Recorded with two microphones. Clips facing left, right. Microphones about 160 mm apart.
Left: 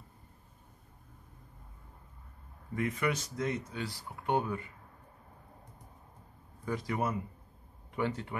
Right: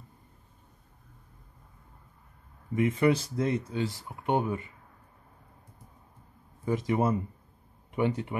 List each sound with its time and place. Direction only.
2.7 s speech: 25° right (ahead or behind)
6.6 s speech: 20° right (ahead or behind)